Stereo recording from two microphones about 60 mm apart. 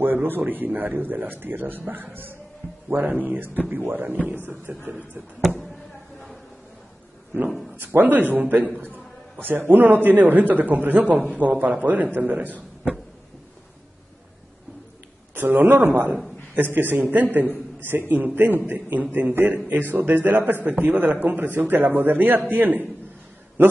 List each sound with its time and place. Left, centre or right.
0.0 s a man's voice: right
3.1 s a man's voice: right
7.3 s a man's voice: right
15.3 s a man's voice: right